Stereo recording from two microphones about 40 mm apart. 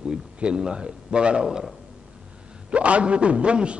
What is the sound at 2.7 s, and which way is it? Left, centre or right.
A man's voice, right.